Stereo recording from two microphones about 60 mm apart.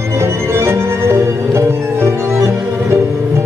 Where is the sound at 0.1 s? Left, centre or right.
Right.